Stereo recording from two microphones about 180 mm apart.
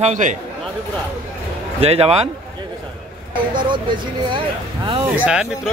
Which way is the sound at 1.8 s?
35° right (ahead or behind).